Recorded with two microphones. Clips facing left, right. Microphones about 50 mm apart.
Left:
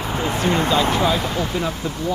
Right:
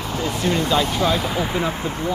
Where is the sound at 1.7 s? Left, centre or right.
Right.